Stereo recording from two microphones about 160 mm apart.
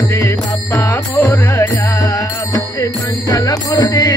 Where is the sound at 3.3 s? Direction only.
25° left (ahead or behind).